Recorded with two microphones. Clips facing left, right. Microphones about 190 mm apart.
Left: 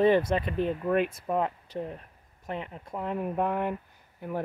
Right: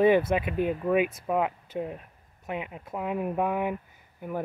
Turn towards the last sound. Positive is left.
turn(degrees=-5)  # may be behind; listen again after turning